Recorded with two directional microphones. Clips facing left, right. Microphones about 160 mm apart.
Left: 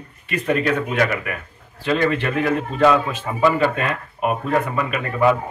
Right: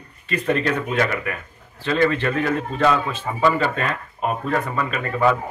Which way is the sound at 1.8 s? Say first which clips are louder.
Even; 15° left (ahead or behind).